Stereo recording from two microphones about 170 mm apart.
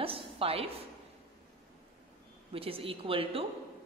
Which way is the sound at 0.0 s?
35° right (ahead or behind).